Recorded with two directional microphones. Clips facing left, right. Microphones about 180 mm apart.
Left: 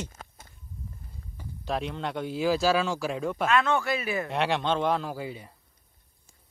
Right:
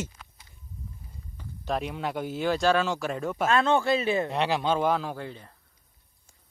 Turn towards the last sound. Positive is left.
turn(degrees=10)  # may be behind; listen again after turning